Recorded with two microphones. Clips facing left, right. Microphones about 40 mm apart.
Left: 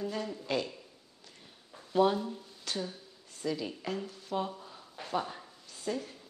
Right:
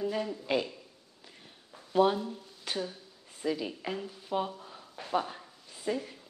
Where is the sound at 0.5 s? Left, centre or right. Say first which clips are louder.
Right 3 dB; centre.